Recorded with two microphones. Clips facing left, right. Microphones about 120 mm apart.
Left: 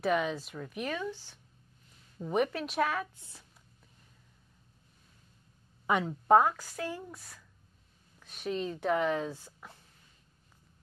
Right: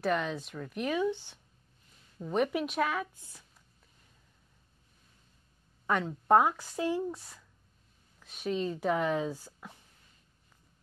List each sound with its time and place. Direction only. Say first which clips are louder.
0.0 s speech: left 1 dB; 5° left (ahead or behind)
1.1 s speech: right 8 dB; 20° right (ahead or behind)
2.2 s speech: right 1 dB; 5° left (ahead or behind)
3.2 s speech: left 1 dB; 25° left (ahead or behind)
5.9 s a woman's voice: left 1 dB; 10° left (ahead or behind)
6.6 s speech: right 7 dB; 20° right (ahead or behind)
8.2 s speech: right 2 dB; centre (ahead or behind)
9.6 s a sound: right 2 dB; centre (ahead or behind)